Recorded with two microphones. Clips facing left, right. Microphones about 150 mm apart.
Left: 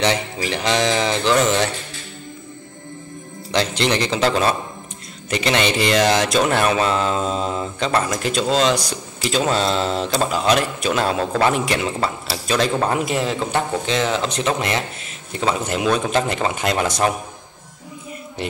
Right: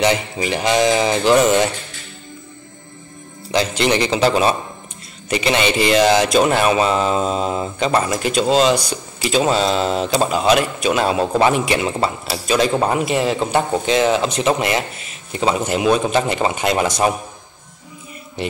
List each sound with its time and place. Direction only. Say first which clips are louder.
0.0 s speech: right 3 dB; 10° right (ahead or behind)
3.5 s speech: right 2 dB; 5° right (ahead or behind)
12.7 s speech: right 2 dB; 15° right (ahead or behind)
13.0 s speech: right 3 dB; 5° right (ahead or behind)
13.4 s speech: right 3 dB; 20° right (ahead or behind)
13.8 s speech: right 5 dB; 10° right (ahead or behind)